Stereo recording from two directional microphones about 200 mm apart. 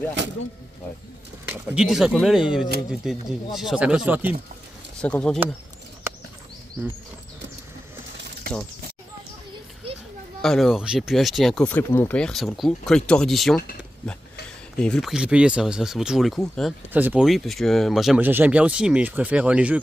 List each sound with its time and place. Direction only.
1.5 s speech: centre (ahead or behind)
5.0 s speech: 5° left (ahead or behind)
8.5 s a sound: 50° right (ahead or behind)
10.4 s speech: centre (ahead or behind)
14.8 s speech: centre (ahead or behind)